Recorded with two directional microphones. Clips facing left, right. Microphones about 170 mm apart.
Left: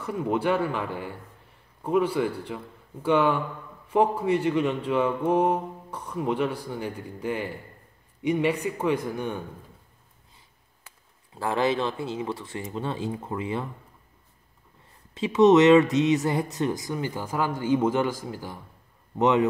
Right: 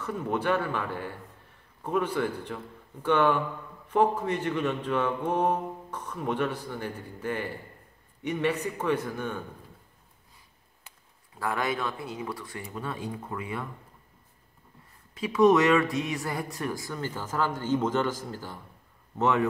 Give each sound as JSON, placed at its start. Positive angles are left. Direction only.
{"t": 0.0, "sound": "speech", "side_deg": 10}
{"t": 11.3, "sound": "speech", "side_deg": 25}
{"t": 15.1, "sound": "speech", "side_deg": 25}